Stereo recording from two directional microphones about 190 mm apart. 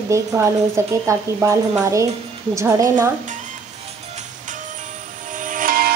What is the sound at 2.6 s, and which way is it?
Speech, 15° right (ahead or behind).